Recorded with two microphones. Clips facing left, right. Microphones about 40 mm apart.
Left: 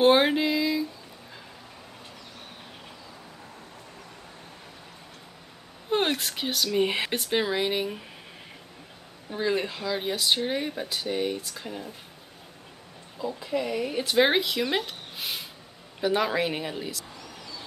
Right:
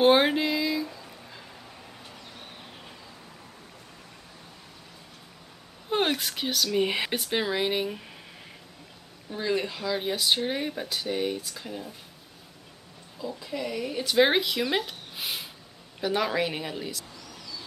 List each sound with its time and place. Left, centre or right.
0.0 s a sound: centre
5.9 s speech: centre
9.3 s speech: centre
13.2 s a woman's voice: centre
14.0 s speech: centre
17.2 s whispering: left